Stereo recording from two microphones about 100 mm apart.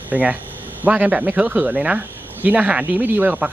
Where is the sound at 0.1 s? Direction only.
15° right (ahead or behind).